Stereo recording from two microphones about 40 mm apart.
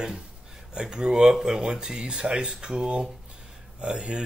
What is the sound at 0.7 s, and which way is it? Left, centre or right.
Speech, centre.